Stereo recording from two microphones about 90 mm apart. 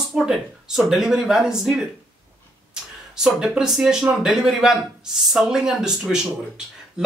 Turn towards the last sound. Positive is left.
turn(degrees=-10)  # may be behind; listen again after turning